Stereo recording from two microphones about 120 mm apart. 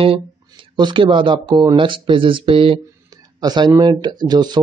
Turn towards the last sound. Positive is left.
turn(degrees=-35)  # may be behind; listen again after turning